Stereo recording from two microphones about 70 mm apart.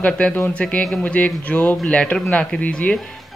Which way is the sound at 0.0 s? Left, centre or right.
Centre.